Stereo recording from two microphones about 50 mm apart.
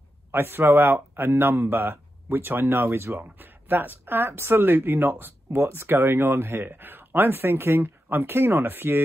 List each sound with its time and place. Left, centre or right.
0.3 s speech: right